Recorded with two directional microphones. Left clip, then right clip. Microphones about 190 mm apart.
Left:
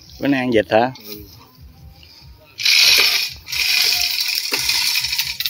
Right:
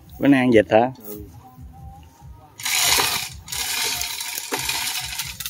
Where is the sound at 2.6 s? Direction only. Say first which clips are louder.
Left 8 dB; 30° right (ahead or behind).